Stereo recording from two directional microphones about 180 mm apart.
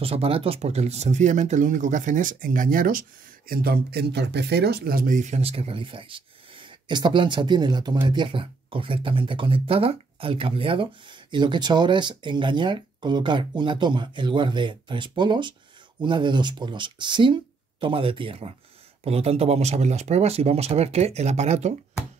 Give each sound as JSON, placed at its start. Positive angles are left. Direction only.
{"t": 0.0, "sound": "speech", "side_deg": -30}